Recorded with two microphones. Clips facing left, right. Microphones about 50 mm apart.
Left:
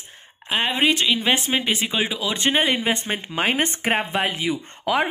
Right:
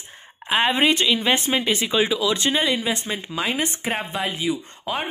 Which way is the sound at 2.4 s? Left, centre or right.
Left.